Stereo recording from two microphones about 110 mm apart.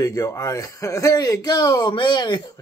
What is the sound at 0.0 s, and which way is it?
Speech, 30° left (ahead or behind).